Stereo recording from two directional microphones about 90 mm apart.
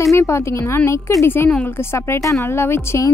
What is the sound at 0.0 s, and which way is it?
A woman's voice, 35° left (ahead or behind).